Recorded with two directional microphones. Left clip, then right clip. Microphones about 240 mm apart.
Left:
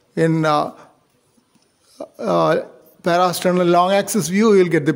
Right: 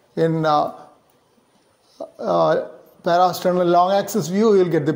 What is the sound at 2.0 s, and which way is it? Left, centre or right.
A man's voice, left.